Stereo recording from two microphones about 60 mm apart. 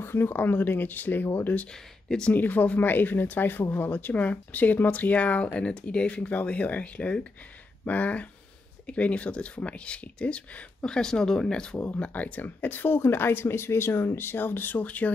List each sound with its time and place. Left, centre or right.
0.0 s speech: left
2.0 s speech: centre
2.3 s speech: left; by 11.8 s centre
11.8 s speech: left